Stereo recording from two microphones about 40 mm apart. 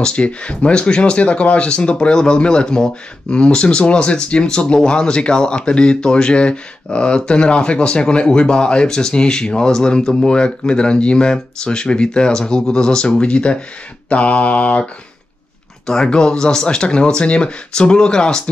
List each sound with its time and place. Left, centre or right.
0.0 s speech: left
14.0 s mantra: left
16.1 s speech: left